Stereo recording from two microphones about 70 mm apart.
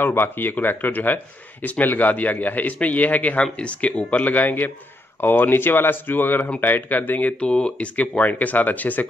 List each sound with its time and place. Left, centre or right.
0.0 s speech: left